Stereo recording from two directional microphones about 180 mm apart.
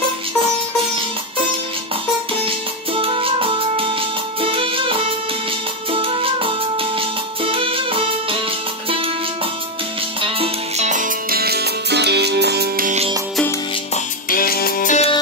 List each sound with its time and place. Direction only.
3.0 s music: 30° right (ahead or behind)
7.4 s music: 30° right (ahead or behind)
10.2 s music: 35° right (ahead or behind); by 12.9 s 60° right (ahead or behind)
14.3 s music: 55° left (ahead or behind)